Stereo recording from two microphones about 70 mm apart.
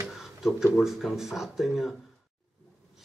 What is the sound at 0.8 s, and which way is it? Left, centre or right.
Speech, centre.